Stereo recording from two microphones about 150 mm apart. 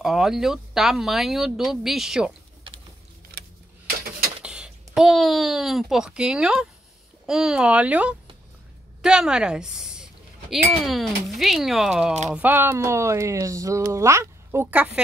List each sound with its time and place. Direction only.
0.0 s speech: 5° right (ahead or behind)
3.3 s a sound: 90° right
4.4 s a woman's voice: 5° right (ahead or behind)